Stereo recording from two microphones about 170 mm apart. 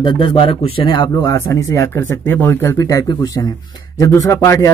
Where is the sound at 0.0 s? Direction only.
30° left (ahead or behind).